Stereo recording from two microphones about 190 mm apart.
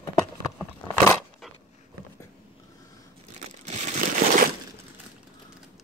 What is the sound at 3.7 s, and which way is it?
Crumpling, 40° right (ahead or behind).